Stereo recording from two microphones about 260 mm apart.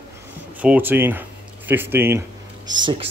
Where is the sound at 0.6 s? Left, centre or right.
Centre.